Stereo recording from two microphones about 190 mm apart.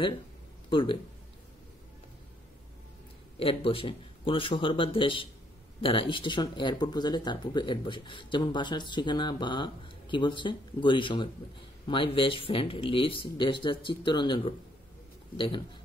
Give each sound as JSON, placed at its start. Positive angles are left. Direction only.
{"t": 0.7, "sound": "speech", "side_deg": 25}
{"t": 3.3, "sound": "speech", "side_deg": 30}